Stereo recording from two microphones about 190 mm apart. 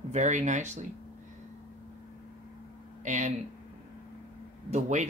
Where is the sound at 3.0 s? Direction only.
40° right (ahead or behind).